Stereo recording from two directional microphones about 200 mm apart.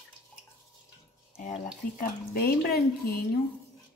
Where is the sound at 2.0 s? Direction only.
50° left (ahead or behind).